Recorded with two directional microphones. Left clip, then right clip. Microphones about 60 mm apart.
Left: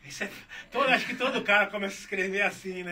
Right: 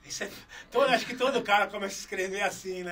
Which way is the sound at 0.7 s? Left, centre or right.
Right.